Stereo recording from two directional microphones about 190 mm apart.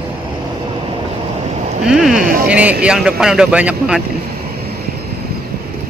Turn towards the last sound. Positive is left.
turn(degrees=-5)  # may be behind; listen again after turning